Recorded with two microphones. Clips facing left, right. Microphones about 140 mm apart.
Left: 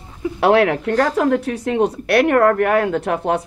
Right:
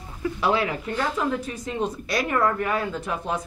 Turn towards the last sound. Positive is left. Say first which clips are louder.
# left 9 dB
turn(degrees=70)  # may be behind; listen again after turning